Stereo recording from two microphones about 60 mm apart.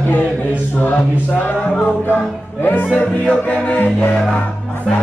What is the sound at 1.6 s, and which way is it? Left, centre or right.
Speech, centre.